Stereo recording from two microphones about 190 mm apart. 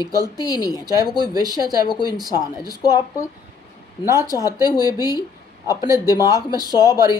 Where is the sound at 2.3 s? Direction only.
20° left (ahead or behind).